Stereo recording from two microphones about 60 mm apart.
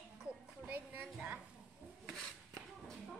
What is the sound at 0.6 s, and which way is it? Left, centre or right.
Speech, right.